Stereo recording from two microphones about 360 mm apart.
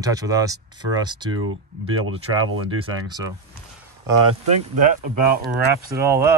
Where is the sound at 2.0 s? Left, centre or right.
Right.